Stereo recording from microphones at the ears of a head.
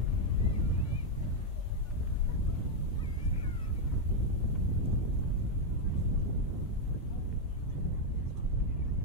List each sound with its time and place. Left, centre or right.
0.4 s boat: right
4.5 s a sound: right
5.9 s wind noise: right